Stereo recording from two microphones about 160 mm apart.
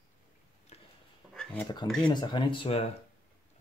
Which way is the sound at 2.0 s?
30° left (ahead or behind).